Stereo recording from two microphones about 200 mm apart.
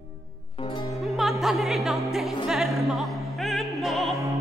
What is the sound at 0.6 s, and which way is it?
Music, 25° left (ahead or behind).